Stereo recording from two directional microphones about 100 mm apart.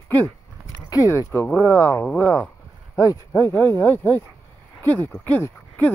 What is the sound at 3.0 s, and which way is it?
Speech, 35° left (ahead or behind).